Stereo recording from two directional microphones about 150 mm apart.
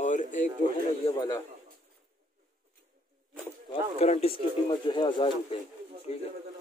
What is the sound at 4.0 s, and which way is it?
Speech, 45° left (ahead or behind).